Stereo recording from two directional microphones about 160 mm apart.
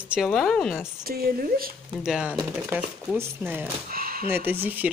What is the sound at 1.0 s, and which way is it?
Speech, 70° right (ahead or behind).